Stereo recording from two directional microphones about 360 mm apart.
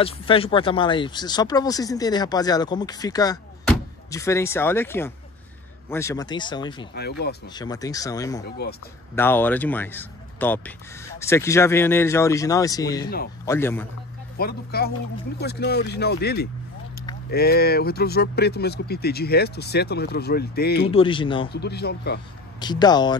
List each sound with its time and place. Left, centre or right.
0.0 s speech: centre
7.0 s speech: left
7.5 s speech: centre
8.5 s speech: left
9.1 s speech: centre
14.4 s speech: left
20.9 s speech: centre
21.5 s speech: left
22.6 s speech: centre